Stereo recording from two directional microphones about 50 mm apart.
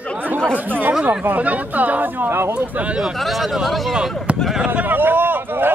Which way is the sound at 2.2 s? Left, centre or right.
Right.